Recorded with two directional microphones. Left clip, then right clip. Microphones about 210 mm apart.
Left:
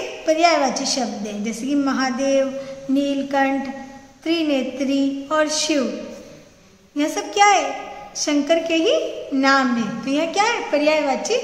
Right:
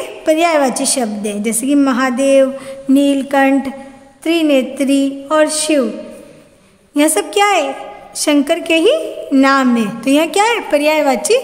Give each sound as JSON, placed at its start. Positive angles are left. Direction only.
{"t": 0.2, "sound": "a woman's voice", "side_deg": -45}
{"t": 7.0, "sound": "a woman's voice", "side_deg": -45}